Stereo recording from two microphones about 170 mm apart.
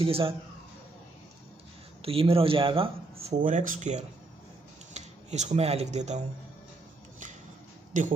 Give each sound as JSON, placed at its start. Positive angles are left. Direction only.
{"t": 0.0, "sound": "speech", "side_deg": -30}
{"t": 2.0, "sound": "speech", "side_deg": -35}
{"t": 3.4, "sound": "speech", "side_deg": -50}
{"t": 7.9, "sound": "speech", "side_deg": -50}